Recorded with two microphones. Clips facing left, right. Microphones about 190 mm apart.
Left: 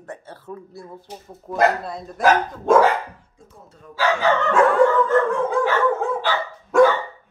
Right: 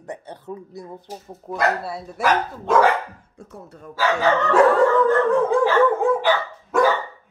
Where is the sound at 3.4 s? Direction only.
65° right (ahead or behind).